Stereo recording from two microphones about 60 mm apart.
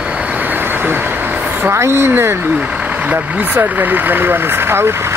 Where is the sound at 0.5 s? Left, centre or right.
Right.